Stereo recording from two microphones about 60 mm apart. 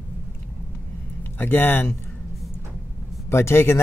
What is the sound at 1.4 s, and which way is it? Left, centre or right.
Speech, left.